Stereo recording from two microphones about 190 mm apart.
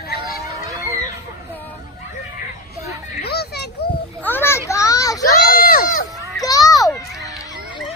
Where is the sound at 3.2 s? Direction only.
55° left (ahead or behind).